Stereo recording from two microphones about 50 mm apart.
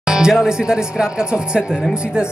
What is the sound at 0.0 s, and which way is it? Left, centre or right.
Speech, centre.